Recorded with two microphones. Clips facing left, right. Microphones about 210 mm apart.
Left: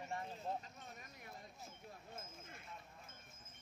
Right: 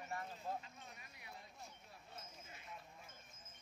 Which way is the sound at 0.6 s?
45° left (ahead or behind).